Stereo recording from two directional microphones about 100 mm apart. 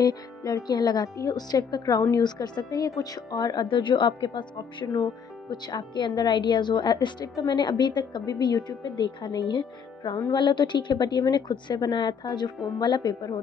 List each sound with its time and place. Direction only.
0.0 s speech: 40° left (ahead or behind)
3.6 s a woman's voice: 55° left (ahead or behind)
10.0 s speech: 35° left (ahead or behind)
10.3 s a woman's voice: 50° left (ahead or behind)